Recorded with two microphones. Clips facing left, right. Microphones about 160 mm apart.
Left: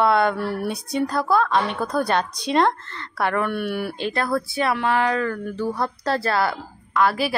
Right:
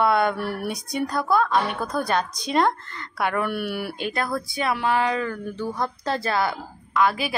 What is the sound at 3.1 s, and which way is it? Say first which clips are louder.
Speech: left 2 dB; 15° right (ahead or behind).